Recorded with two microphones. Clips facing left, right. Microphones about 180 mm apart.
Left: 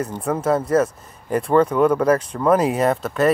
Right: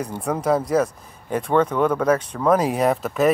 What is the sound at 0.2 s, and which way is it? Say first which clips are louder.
Speech: even; centre (ahead or behind).